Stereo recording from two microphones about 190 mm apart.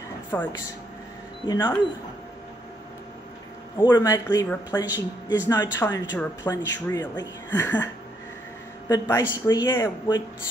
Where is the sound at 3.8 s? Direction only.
20° left (ahead or behind).